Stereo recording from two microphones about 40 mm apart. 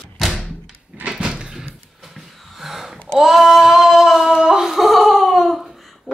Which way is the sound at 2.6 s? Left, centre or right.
Centre.